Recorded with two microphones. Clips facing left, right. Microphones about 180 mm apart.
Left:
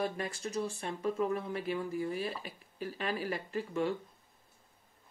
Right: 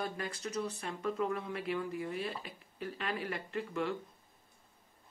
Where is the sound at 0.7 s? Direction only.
30° left (ahead or behind).